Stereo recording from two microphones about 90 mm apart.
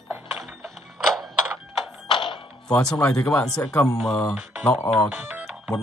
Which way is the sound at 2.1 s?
65° left (ahead or behind).